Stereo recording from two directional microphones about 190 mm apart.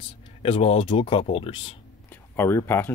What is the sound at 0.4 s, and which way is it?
Speech, 30° left (ahead or behind).